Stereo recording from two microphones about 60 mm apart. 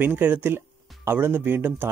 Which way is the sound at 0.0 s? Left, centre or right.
Right.